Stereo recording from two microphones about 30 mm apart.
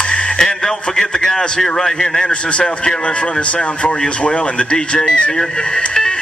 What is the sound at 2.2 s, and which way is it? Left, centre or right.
Speech, left.